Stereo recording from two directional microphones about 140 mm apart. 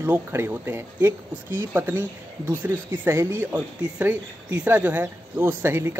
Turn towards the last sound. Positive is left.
turn(degrees=-15)  # may be behind; listen again after turning